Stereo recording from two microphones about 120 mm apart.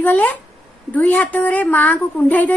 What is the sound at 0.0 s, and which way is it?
A woman's voice, 15° left (ahead or behind).